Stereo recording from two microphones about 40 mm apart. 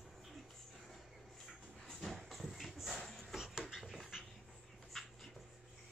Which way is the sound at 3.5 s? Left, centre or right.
Centre.